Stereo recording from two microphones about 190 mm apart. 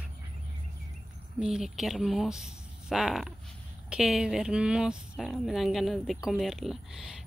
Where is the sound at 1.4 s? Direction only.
5° right (ahead or behind).